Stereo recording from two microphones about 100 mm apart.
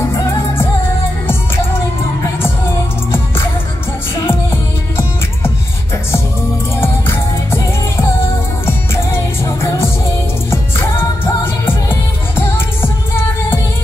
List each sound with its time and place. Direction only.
0.2 s music: 30° left (ahead or behind)
4.3 s music: 25° left (ahead or behind)
6.8 s music: 25° left (ahead or behind)
8.6 s music: 25° left (ahead or behind)